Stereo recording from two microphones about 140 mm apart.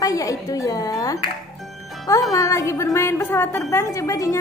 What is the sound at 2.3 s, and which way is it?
A woman's voice, 25° left (ahead or behind).